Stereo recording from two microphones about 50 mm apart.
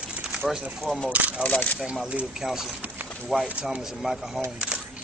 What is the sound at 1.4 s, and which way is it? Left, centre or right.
Speech, left.